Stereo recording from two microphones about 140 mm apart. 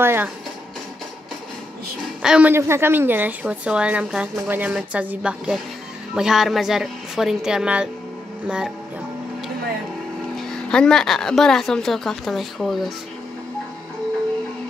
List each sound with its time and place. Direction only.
0.0 s a woman's voice: 15° right (ahead or behind)
2.2 s a woman's voice: 5° right (ahead or behind)
2.5 s a woman's voice: 20° right (ahead or behind)
10.7 s a woman's voice: 5° left (ahead or behind)